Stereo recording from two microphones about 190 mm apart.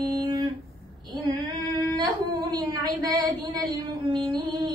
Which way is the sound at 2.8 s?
20° right (ahead or behind).